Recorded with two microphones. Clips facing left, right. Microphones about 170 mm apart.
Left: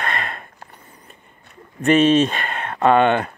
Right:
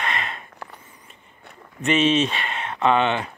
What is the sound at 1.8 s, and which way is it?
Speech, 50° left (ahead or behind).